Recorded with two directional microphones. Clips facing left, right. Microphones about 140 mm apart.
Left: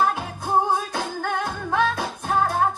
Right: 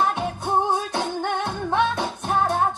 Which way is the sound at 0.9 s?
25° right (ahead or behind).